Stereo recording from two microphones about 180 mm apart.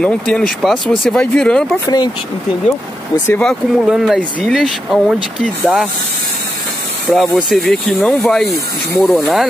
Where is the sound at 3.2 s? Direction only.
5° left (ahead or behind).